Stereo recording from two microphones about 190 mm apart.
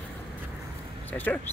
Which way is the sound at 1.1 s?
10° left (ahead or behind).